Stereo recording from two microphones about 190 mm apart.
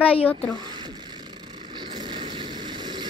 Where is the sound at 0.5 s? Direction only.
20° right (ahead or behind).